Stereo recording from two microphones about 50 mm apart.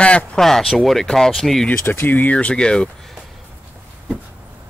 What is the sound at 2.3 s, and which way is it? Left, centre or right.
Speech, left.